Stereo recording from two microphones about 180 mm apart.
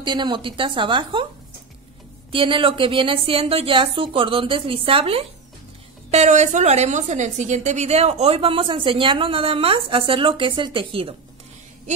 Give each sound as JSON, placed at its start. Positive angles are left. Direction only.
{"t": 0.0, "sound": "a woman's voice", "side_deg": -25}
{"t": 2.3, "sound": "a woman's voice", "side_deg": -30}